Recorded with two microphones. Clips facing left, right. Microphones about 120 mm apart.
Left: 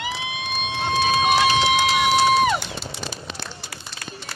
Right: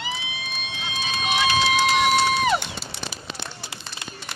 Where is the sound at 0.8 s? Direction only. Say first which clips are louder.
Left 11 dB; 55° left (ahead or behind).